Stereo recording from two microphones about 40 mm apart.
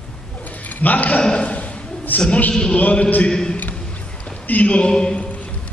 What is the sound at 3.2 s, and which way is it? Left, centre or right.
Speech, centre.